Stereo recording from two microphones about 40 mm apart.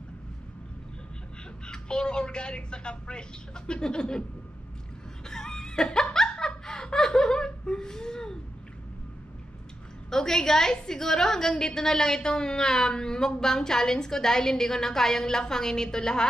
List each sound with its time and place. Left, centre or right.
1.7 s a woman's voice: left
5.2 s snicker: centre
6.1 s laughter: centre
10.0 s a woman's voice: centre